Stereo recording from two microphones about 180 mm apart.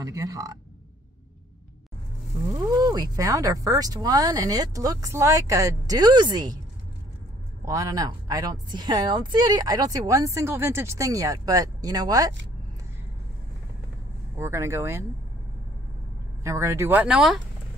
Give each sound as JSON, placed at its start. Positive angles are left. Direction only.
{"t": 0.0, "sound": "a woman's voice", "side_deg": -20}
{"t": 2.5, "sound": "a woman's voice", "side_deg": -20}
{"t": 7.6, "sound": "a woman's voice", "side_deg": -20}
{"t": 14.3, "sound": "speech", "side_deg": -15}
{"t": 16.4, "sound": "speech", "side_deg": -15}